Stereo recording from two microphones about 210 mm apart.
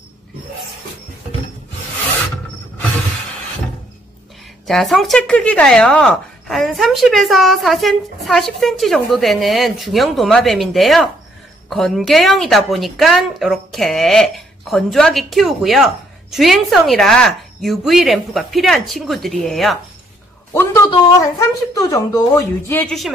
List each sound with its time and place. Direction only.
4.6 s a woman's voice: centre (ahead or behind)
20.5 s speech: 15° left (ahead or behind)